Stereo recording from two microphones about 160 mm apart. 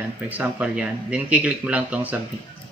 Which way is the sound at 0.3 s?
10° right (ahead or behind).